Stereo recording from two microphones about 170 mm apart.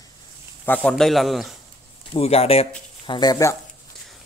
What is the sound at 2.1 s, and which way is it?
Speech, 35° left (ahead or behind).